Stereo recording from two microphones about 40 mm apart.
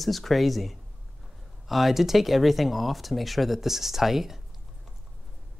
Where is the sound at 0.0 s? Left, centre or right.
Centre.